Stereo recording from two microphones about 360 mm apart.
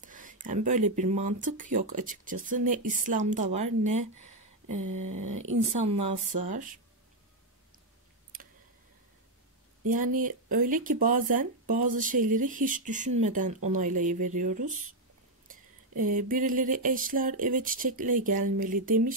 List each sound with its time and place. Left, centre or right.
0.0 s speech: right
4.7 s a sound: right
5.7 s speech: centre
8.3 s a sound: right
9.8 s speech: right
16.0 s speech: right